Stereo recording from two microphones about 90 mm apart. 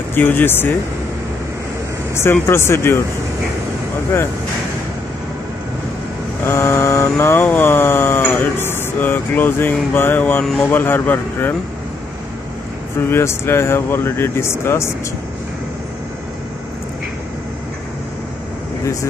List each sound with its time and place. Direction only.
0.1 s speech: 25° left (ahead or behind)
2.1 s speech: 30° left (ahead or behind)
6.4 s vehicle: 30° left (ahead or behind)
7.2 s speech: 25° left (ahead or behind)
13.1 s speech: 30° left (ahead or behind)